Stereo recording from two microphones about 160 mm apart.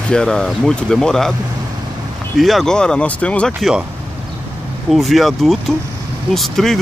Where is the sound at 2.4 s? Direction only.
Centre (ahead or behind).